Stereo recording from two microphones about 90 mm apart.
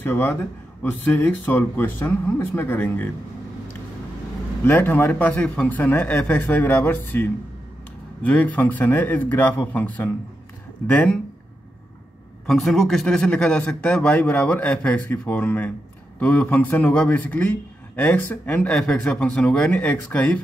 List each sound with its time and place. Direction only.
0.0 s speech: 25° left (ahead or behind)
4.6 s a man's voice: 20° left (ahead or behind)
12.4 s a man's voice: centre (ahead or behind)
13.0 s a man's voice: 10° left (ahead or behind)